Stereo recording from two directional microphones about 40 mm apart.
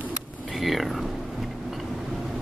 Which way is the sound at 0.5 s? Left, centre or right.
Centre.